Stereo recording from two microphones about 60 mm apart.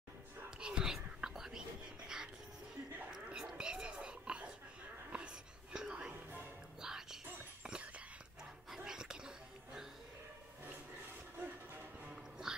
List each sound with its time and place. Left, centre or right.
0.6 s whispering: centre
3.1 s a sound: centre
5.1 s whispering: centre
6.1 s music: right
6.8 s music: centre
7.6 s whispering: centre
8.6 s dog: centre
11.3 s train: right
12.1 s music: centre